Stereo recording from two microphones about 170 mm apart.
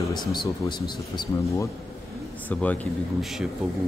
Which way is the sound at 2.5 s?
10° left (ahead or behind).